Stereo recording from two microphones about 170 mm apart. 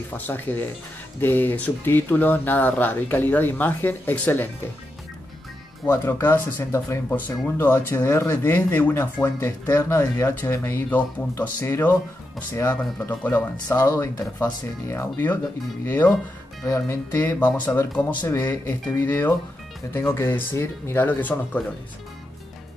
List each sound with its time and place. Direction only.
0.1 s speech: 10° left (ahead or behind)
5.9 s speech: 10° left (ahead or behind)